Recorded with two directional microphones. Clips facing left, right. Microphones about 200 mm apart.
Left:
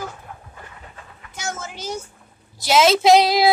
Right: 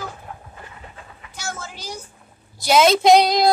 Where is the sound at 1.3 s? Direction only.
20° left (ahead or behind).